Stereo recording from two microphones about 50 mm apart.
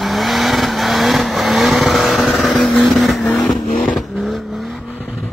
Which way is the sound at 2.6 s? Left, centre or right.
Centre.